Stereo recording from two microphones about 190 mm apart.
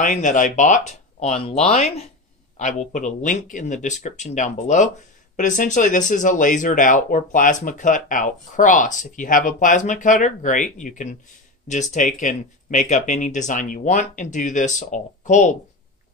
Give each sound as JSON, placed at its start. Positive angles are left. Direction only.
{"t": 0.0, "sound": "speech", "side_deg": 40}